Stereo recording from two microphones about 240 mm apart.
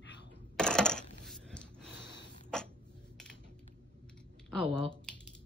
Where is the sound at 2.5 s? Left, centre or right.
Centre.